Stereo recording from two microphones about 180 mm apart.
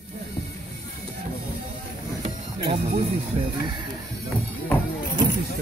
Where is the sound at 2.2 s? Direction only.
30° right (ahead or behind).